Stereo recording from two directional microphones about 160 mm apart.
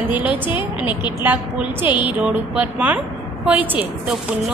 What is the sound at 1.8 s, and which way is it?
Speech, 30° left (ahead or behind).